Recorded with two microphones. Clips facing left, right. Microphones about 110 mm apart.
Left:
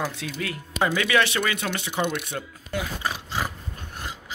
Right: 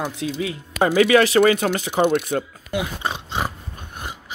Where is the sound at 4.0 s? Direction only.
20° right (ahead or behind).